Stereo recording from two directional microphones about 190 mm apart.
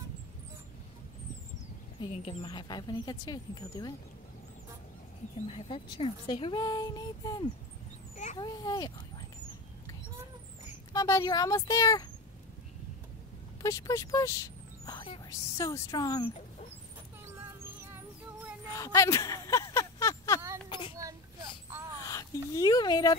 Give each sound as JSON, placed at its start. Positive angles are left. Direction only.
{"t": 2.0, "sound": "speech", "side_deg": 30}
{"t": 5.5, "sound": "speech", "side_deg": 30}
{"t": 10.9, "sound": "speech", "side_deg": 15}
{"t": 13.6, "sound": "speech", "side_deg": 15}
{"t": 17.3, "sound": "music", "side_deg": -10}
{"t": 18.7, "sound": "a sound", "side_deg": 15}
{"t": 22.0, "sound": "speech", "side_deg": 20}